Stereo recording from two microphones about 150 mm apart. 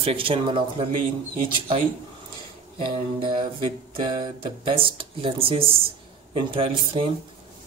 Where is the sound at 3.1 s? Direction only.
35° right (ahead or behind).